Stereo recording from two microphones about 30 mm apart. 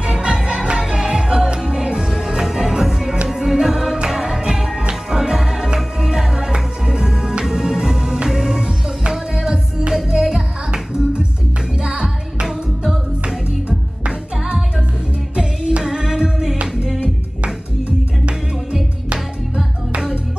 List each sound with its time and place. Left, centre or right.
0.1 s music: right
13.7 s music: right
15.8 s music: right